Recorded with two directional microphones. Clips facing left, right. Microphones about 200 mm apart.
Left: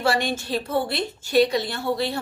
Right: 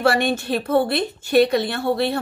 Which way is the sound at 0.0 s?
60° right (ahead or behind).